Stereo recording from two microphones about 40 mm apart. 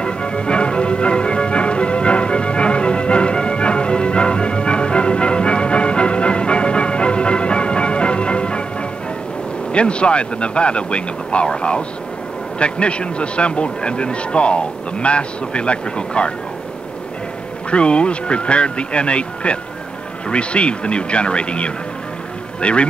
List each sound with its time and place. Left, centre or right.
0.0 s music: left
9.7 s a man's voice: left
17.6 s a man's voice: left